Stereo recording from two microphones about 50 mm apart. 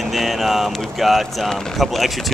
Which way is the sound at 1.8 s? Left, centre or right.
Centre.